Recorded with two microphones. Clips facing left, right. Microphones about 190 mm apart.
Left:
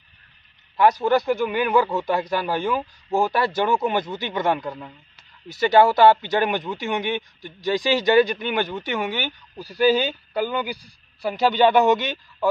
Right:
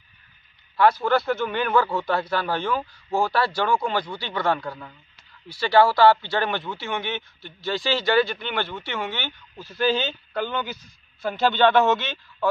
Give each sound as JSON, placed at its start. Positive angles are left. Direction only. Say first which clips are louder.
{"t": 0.7, "sound": "speech", "louder": "left 2 dB", "side_deg": 15}